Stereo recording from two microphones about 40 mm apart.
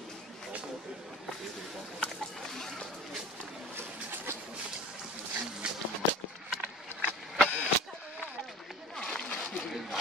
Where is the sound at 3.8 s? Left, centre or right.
Right.